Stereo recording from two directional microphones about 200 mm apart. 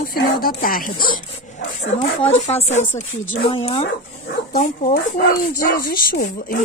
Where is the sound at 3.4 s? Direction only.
25° left (ahead or behind).